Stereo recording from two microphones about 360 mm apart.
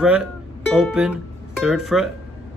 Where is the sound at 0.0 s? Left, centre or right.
Centre.